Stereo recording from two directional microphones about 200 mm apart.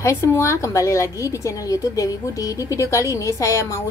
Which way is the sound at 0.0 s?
15° left (ahead or behind).